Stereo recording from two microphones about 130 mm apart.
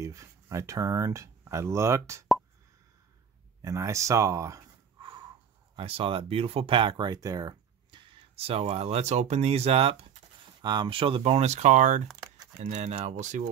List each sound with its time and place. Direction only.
0.0 s speech: 25° right (ahead or behind)
3.6 s speech: 25° right (ahead or behind)
5.8 s speech: 45° right (ahead or behind)
10.6 s speech: 35° right (ahead or behind); by 12.9 s 75° right (ahead or behind)
12.9 s speech: 65° right (ahead or behind)